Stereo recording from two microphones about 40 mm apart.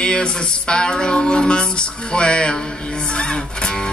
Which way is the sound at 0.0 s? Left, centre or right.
Left.